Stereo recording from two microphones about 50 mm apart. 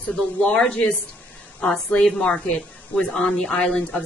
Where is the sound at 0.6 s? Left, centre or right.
Left.